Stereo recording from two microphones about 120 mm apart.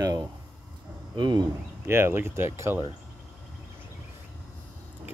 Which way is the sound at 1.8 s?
20° right (ahead or behind).